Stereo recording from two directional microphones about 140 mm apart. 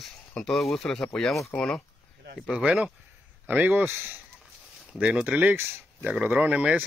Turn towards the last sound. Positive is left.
turn(degrees=-10)  # may be behind; listen again after turning